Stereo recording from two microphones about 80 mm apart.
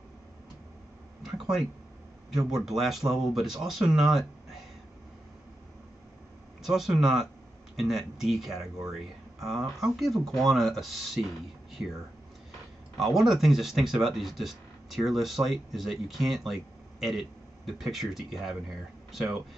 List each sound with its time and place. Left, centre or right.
1.2 s a sound: centre
2.3 s speech: centre
6.6 s speech: centre
12.9 s speech: centre